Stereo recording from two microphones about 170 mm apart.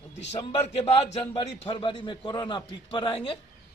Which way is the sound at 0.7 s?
40° left (ahead or behind).